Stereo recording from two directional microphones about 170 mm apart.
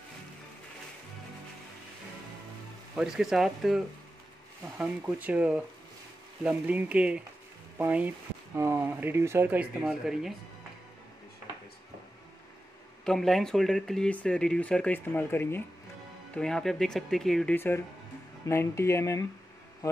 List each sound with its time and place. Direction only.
3.0 s speech: 5° right (ahead or behind)
13.0 s speech: centre (ahead or behind)